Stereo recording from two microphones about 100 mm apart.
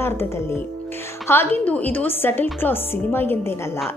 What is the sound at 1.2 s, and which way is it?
A woman's voice, 20° left (ahead or behind).